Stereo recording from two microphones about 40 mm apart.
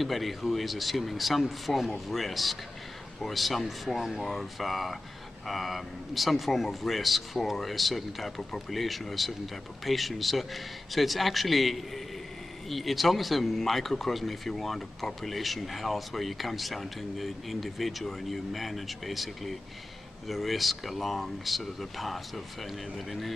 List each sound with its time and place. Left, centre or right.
0.0 s speech: centre